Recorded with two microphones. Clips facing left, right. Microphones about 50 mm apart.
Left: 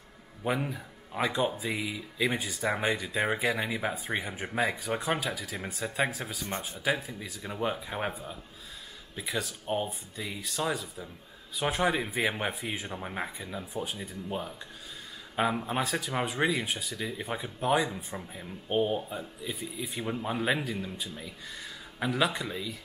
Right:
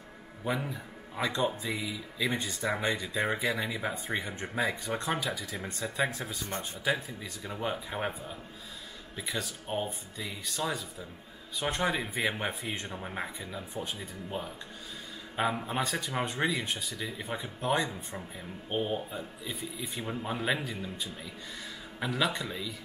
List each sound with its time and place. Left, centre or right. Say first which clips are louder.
0.4 s a man's voice: left 2 dB; centre
1.9 s speech: left 2 dB; left
2.3 s speech: left 1 dB; centre
3.5 s speech: left 2 dB; centre
4.2 s speech: left 3 dB; centre
15.3 s speech: left 2 dB; centre